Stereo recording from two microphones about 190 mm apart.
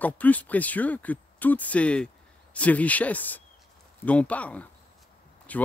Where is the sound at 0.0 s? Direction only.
10° left (ahead or behind).